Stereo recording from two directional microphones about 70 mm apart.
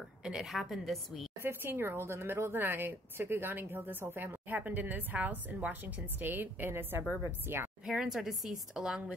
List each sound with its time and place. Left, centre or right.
0.2 s a sound: centre
0.5 s a woman's voice: centre
1.4 s a woman's voice: right
7.8 s speech: centre